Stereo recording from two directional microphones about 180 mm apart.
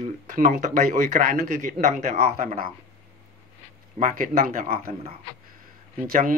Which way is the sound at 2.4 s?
50° right (ahead or behind).